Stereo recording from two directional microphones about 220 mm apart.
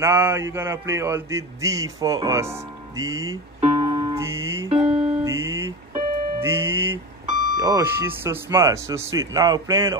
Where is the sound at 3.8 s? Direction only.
15° right (ahead or behind).